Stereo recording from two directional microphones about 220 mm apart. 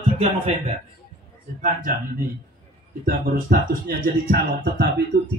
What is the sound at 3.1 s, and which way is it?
Speech, 40° right (ahead or behind).